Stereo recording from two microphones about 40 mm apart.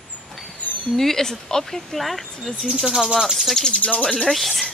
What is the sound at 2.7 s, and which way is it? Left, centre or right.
Speech, centre.